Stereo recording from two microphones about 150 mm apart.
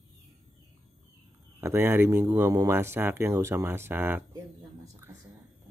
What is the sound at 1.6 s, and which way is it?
Speech, 15° right (ahead or behind).